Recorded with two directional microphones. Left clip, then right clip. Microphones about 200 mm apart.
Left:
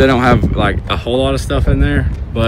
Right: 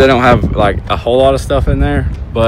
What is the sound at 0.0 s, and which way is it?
Speech, 5° left (ahead or behind).